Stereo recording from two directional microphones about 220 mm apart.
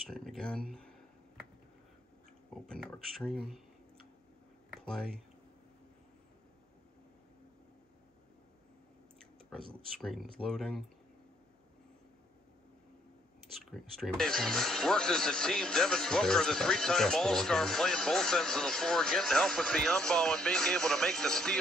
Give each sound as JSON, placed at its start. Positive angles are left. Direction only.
{"t": 0.0, "sound": "speech", "side_deg": 0}
{"t": 2.5, "sound": "speech", "side_deg": 5}
{"t": 4.8, "sound": "speech", "side_deg": 5}
{"t": 9.6, "sound": "speech", "side_deg": -25}
{"t": 9.9, "sound": "speech", "side_deg": 5}
{"t": 13.4, "sound": "speech", "side_deg": 0}